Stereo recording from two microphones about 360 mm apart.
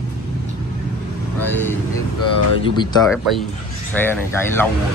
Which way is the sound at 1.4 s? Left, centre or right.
Centre.